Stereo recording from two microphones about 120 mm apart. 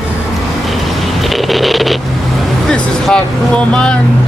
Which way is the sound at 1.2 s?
Centre (ahead or behind).